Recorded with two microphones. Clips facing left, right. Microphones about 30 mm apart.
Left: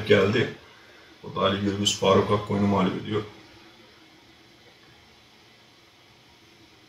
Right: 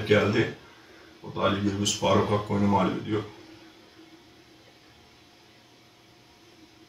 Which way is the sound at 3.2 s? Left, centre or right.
Centre.